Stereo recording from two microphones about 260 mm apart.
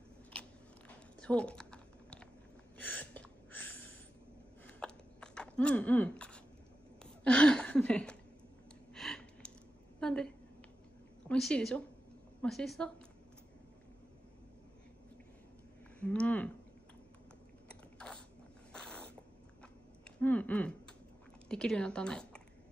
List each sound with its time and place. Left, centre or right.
1.2 s typing: centre
2.8 s gasp: centre
4.6 s a sound: centre
9.9 s a woman's voice: centre
16.0 s speech: centre
17.6 s biting: centre
18.7 s cat: centre
20.2 s speech: centre